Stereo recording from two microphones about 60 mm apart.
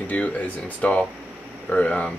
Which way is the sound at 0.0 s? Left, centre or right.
Left.